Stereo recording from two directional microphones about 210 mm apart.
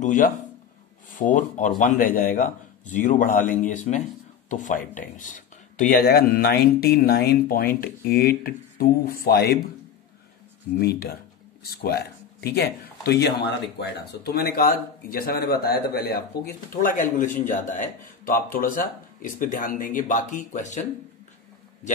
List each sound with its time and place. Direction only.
0.0 s a man's voice: 40° left (ahead or behind)
11.6 s a man's voice: 50° left (ahead or behind)